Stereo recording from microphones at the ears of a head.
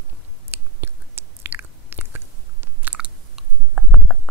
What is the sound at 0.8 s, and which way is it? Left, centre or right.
Chewing, right.